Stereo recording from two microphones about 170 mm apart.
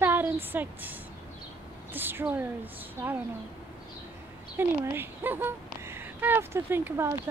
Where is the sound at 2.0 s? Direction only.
10° right (ahead or behind).